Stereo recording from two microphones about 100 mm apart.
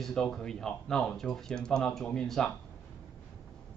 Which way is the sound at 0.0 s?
5° left (ahead or behind).